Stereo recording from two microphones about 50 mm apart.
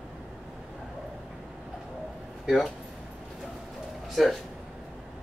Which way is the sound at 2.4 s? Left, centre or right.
Centre.